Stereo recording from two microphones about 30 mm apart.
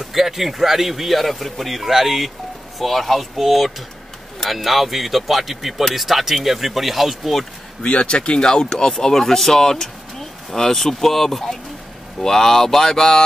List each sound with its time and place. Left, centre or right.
0.0 s speech: centre
7.8 s speech: left
9.1 s speech: centre
12.2 s speech: centre